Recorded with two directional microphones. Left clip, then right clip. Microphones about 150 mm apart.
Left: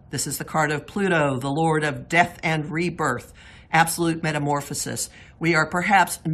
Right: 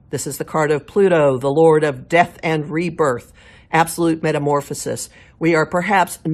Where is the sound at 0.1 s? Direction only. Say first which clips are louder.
Right 5 dB; 30° right (ahead or behind).